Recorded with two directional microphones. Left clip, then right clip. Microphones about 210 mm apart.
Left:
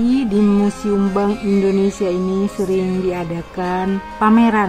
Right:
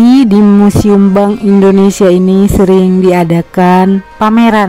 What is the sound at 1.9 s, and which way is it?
Speech, 40° right (ahead or behind).